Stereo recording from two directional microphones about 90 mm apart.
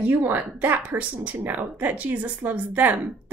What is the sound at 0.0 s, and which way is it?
A woman's voice, 20° right (ahead or behind).